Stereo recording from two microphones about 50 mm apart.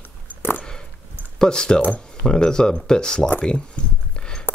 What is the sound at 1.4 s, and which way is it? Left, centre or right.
Speech, centre.